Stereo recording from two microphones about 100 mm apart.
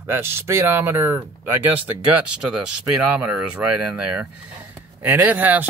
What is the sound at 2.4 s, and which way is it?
Speech, 10° right (ahead or behind).